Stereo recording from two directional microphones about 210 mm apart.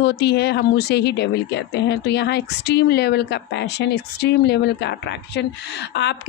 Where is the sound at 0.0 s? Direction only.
50° left (ahead or behind).